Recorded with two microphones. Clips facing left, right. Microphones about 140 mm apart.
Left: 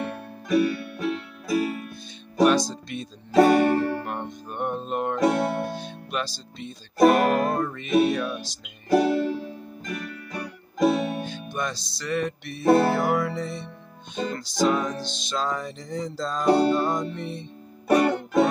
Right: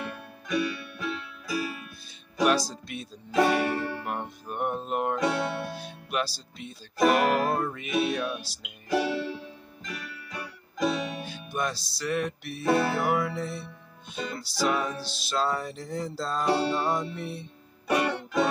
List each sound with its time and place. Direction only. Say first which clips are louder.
0.1 s music: left 7 dB; 40° left (ahead or behind)
2.4 s speech: left 5 dB; 5° right (ahead or behind)
3.3 s music: left 7 dB; 40° left (ahead or behind)
4.0 s music: left 2 dB; 5° right (ahead or behind)
5.2 s music: left 5 dB; 45° left (ahead or behind)
5.8 s speech: even; 5° right (ahead or behind)
7.0 s speech: left 4 dB; 40° left (ahead or behind)
7.5 s music: left 6 dB; 10° right (ahead or behind)
8.8 s music: left 7 dB; 45° left (ahead or behind)
11.2 s music: left 1 dB; 5° right (ahead or behind)
12.6 s speech: left 6 dB; 35° left (ahead or behind)
12.9 s music: left 3 dB; 5° right (ahead or behind)
17.8 s music: left 6 dB; 40° left (ahead or behind)